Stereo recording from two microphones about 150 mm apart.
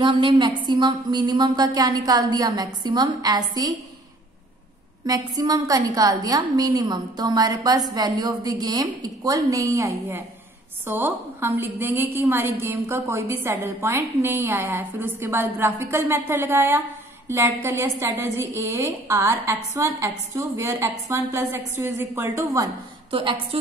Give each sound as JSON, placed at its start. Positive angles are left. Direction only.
{"t": 0.0, "sound": "a woman's voice", "side_deg": -30}
{"t": 5.0, "sound": "a woman's voice", "side_deg": -25}
{"t": 23.1, "sound": "a woman's voice", "side_deg": -35}